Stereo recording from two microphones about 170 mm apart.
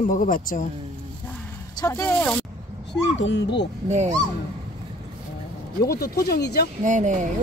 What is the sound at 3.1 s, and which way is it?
Speech, 90° left.